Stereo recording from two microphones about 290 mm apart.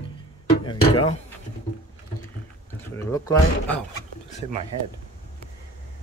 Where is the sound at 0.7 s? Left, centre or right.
Centre.